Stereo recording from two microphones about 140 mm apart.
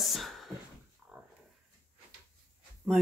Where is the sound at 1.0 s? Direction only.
5° right (ahead or behind).